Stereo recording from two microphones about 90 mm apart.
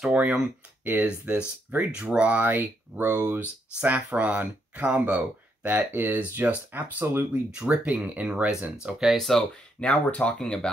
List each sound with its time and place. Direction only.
0.0 s speech: 10° right (ahead or behind)
7.5 s speech: 10° right (ahead or behind)
8.8 s speech: 5° right (ahead or behind)